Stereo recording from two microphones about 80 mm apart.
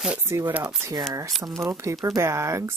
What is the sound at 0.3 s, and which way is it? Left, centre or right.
Speech, right.